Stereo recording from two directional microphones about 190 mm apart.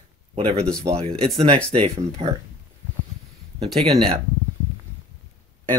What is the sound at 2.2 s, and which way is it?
Speech, 30° right (ahead or behind).